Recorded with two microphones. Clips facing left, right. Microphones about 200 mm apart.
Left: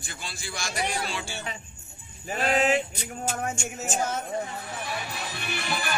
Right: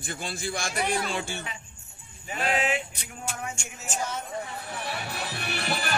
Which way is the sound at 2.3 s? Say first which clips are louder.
Left 4 dB; 40° left (ahead or behind).